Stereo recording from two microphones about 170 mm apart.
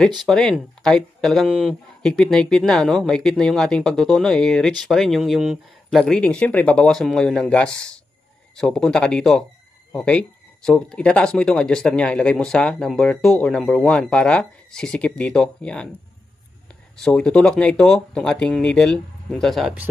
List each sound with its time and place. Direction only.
0.0 s speech: centre (ahead or behind)
17.0 s speech: 5° left (ahead or behind)